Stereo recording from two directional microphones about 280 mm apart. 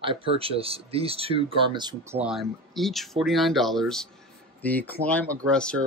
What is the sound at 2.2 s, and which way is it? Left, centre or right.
Speech, centre.